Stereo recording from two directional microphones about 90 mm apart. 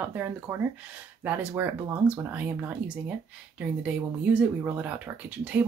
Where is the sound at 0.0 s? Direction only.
20° right (ahead or behind).